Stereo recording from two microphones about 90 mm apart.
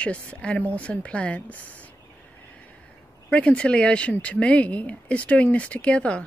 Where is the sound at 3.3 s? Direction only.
10° left (ahead or behind).